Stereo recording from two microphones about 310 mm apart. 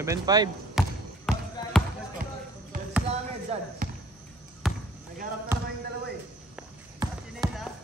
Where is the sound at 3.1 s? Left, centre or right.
Right.